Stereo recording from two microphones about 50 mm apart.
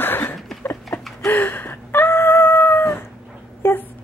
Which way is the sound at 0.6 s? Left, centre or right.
Left.